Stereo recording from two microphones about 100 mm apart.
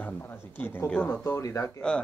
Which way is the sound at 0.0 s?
20° left (ahead or behind).